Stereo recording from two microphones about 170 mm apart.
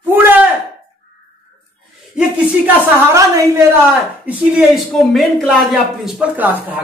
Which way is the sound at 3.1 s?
20° right (ahead or behind).